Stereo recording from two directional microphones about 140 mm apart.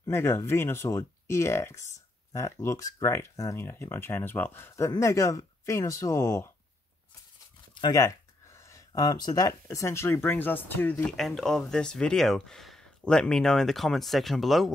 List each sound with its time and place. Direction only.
0.0 s speech: 20° left (ahead or behind)
7.8 s speech: 25° left (ahead or behind)
11.1 s speech: 5° left (ahead or behind)